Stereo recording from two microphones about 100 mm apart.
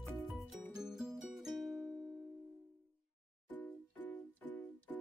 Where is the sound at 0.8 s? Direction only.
5° right (ahead or behind).